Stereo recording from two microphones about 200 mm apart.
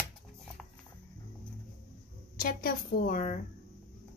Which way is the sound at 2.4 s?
45° left (ahead or behind).